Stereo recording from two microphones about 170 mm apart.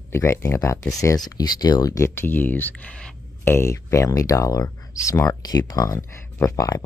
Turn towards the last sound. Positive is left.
turn(degrees=20)  # may be behind; listen again after turning